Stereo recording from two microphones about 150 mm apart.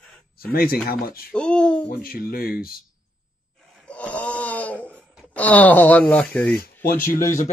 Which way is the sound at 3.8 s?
10° left (ahead or behind).